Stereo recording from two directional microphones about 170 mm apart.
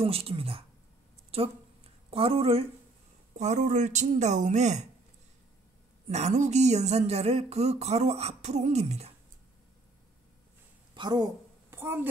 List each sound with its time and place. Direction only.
0.0 s speech: 35° right (ahead or behind)
6.0 s speech: 40° right (ahead or behind)
11.0 s a woman's voice: 25° right (ahead or behind)